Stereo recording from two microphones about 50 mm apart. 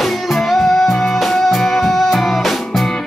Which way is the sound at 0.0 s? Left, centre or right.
Centre.